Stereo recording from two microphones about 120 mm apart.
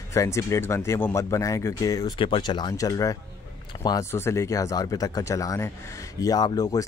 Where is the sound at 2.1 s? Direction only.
45° left (ahead or behind).